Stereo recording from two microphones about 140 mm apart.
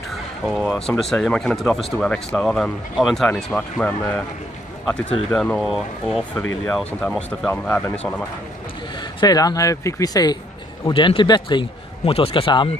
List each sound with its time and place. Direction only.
0.5 s speech: centre (ahead or behind)
5.3 s speech: 5° left (ahead or behind)
9.0 s a man's voice: 30° left (ahead or behind)
12.0 s a man's voice: 45° left (ahead or behind)